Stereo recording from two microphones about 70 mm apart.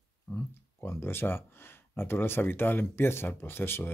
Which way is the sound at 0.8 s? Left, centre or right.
Left.